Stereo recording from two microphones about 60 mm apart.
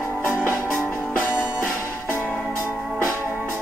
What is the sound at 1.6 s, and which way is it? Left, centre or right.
Music, left.